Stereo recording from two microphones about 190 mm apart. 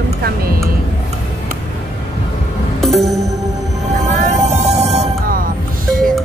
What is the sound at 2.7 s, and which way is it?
Music, centre (ahead or behind).